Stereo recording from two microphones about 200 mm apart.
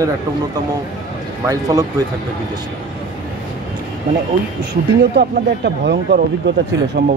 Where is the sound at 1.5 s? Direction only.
20° right (ahead or behind).